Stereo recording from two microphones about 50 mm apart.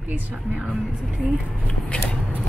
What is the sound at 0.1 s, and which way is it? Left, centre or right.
Speech, right.